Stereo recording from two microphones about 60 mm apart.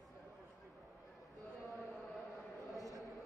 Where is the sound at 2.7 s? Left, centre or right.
Right.